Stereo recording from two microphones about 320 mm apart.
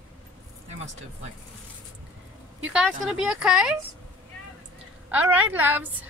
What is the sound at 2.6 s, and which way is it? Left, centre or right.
A woman's voice, centre.